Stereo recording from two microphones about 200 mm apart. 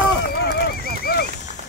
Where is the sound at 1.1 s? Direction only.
50° left (ahead or behind).